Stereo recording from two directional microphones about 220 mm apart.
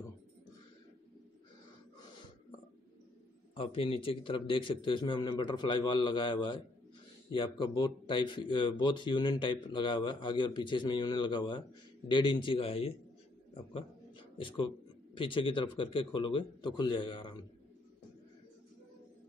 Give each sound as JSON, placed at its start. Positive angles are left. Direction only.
{"t": 3.5, "sound": "speech", "side_deg": 25}
{"t": 15.1, "sound": "speech", "side_deg": 25}